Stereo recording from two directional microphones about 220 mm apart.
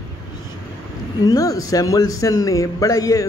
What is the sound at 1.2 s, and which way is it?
A man's voice, 15° left (ahead or behind).